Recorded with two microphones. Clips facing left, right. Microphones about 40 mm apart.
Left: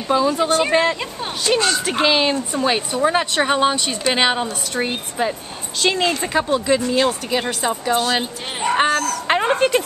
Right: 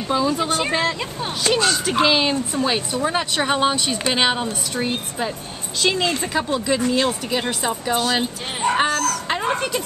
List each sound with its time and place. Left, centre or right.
0.1 s a woman's voice: centre
9.3 s speech: left